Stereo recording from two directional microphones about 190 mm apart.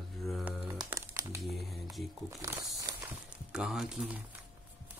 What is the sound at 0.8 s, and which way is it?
Crumpling, 15° right (ahead or behind).